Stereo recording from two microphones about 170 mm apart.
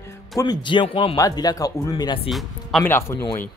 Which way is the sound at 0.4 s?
25° left (ahead or behind).